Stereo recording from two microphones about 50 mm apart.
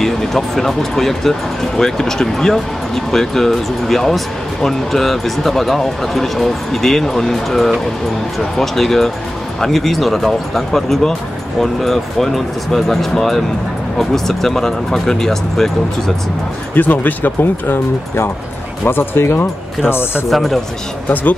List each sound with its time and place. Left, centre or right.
0.0 s speech: centre
16.7 s speech: left
20.2 s speech: centre
21.1 s speech: left